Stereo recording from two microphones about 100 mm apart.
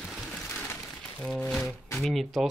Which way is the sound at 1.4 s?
5° left (ahead or behind).